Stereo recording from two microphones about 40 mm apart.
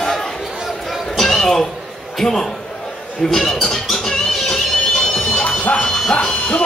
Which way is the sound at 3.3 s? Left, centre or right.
Centre.